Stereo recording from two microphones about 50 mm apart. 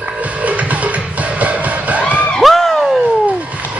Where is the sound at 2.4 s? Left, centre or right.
Centre.